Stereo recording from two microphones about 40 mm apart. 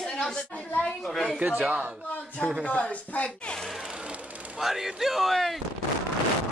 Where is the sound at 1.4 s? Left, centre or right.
Right.